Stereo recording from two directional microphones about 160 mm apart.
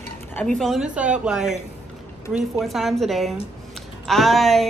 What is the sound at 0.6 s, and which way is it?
Speech, centre (ahead or behind).